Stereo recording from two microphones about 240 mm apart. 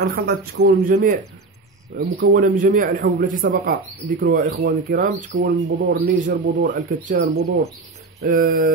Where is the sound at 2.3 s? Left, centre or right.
Right.